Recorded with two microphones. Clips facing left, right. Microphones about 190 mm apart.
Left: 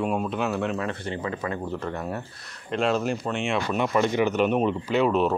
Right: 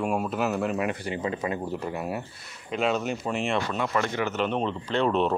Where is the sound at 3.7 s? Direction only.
15° left (ahead or behind).